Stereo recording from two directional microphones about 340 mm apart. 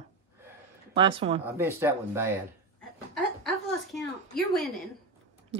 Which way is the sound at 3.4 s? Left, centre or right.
Centre.